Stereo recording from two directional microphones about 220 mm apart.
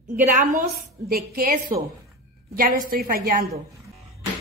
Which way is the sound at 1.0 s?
40° right (ahead or behind).